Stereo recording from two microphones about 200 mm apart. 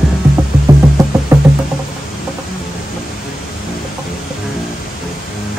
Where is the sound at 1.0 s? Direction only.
15° right (ahead or behind).